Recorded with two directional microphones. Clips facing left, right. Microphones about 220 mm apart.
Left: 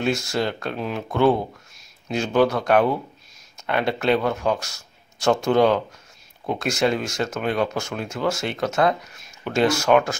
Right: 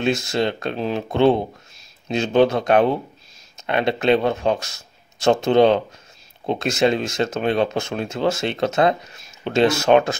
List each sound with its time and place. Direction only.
0.0 s speech: 20° right (ahead or behind)